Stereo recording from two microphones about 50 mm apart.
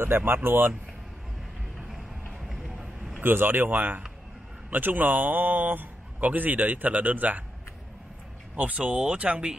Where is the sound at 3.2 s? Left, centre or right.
Right.